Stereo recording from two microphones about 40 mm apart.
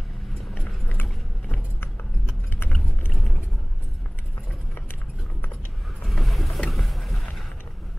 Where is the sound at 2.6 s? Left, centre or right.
Left.